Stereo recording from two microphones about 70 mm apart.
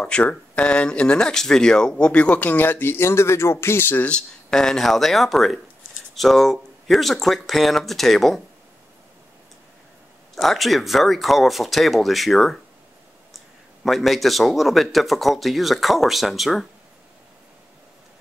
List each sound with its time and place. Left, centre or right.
0.0 s speech: centre
4.5 s speech: centre
10.3 s speech: centre
13.8 s speech: centre